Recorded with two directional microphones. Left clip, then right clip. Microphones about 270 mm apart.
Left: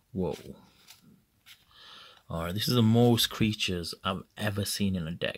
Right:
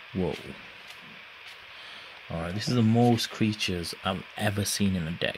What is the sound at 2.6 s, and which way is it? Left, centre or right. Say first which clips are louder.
Speech: even; centre.